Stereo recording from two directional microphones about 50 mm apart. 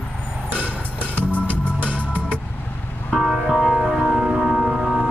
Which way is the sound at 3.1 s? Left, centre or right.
Centre.